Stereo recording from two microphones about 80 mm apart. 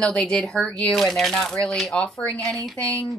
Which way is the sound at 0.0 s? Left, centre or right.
Centre.